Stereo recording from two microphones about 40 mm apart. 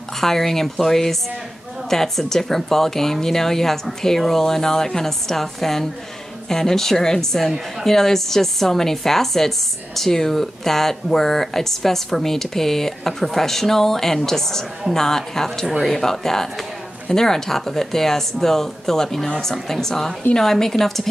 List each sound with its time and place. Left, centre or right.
0.2 s speech: centre